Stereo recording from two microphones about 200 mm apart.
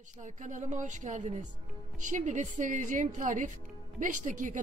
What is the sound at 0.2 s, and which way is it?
Speech, 35° right (ahead or behind).